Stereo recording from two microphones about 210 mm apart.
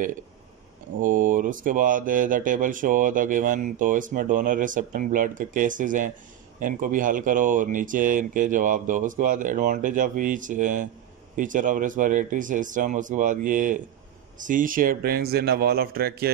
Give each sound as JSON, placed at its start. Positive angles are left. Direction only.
{"t": 1.0, "sound": "speech", "side_deg": -40}